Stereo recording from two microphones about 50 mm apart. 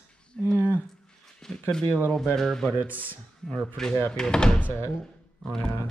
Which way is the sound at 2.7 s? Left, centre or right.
Right.